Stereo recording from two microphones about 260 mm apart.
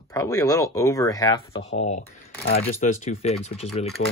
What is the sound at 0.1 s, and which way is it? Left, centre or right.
Speech, centre.